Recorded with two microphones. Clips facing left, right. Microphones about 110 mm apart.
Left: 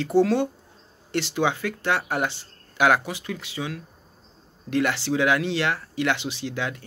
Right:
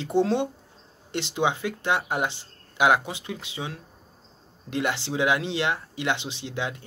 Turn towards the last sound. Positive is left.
turn(degrees=-25)  # may be behind; listen again after turning